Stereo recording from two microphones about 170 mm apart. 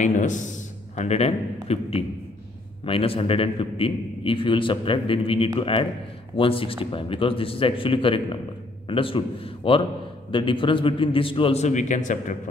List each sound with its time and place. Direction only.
0.0 s a man's voice: 45° left (ahead or behind)